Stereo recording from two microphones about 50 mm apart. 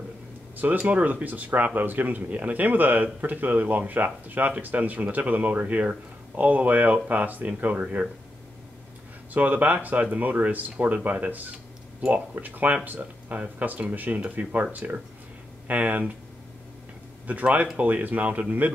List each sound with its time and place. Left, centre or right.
0.6 s speech: right
9.3 s speech: right
17.3 s speech: right